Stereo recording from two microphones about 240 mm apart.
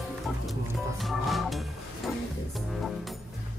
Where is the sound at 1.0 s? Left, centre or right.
Centre.